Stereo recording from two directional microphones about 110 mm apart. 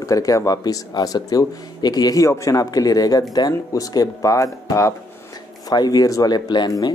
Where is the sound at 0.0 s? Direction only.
30° left (ahead or behind).